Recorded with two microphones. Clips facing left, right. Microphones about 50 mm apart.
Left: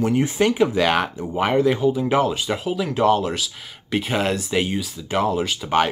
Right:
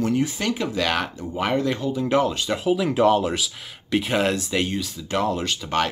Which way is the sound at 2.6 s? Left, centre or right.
Centre.